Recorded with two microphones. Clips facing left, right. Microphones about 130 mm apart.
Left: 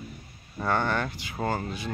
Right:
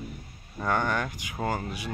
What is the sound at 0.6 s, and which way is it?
Speech, 10° right (ahead or behind).